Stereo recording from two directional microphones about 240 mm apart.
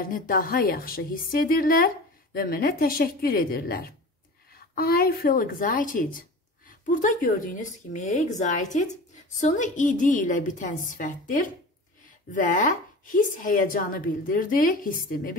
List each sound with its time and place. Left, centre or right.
0.0 s a woman's voice: left